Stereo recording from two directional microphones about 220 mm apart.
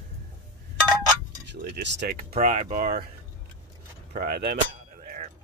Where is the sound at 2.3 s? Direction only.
30° right (ahead or behind).